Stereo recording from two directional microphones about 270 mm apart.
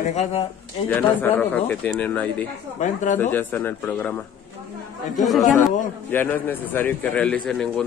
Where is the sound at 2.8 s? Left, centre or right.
Left.